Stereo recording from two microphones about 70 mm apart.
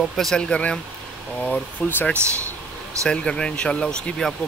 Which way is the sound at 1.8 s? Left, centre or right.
Left.